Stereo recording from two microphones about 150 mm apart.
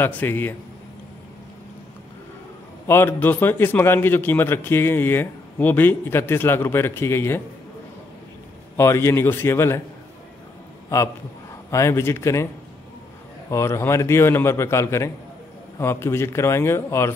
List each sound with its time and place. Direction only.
0.0 s a man's voice: 15° left (ahead or behind)
2.9 s a man's voice: 15° left (ahead or behind)
8.7 s a man's voice: 15° left (ahead or behind)
10.9 s a man's voice: 20° left (ahead or behind)
13.5 s a man's voice: 20° left (ahead or behind)